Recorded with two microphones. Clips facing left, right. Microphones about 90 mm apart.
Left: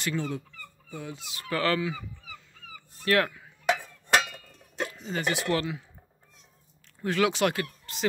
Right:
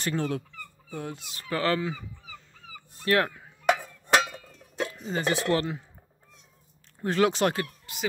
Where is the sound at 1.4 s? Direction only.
25° right (ahead or behind).